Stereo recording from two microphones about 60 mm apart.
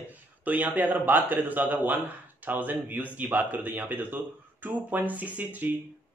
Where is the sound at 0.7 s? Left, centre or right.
Right.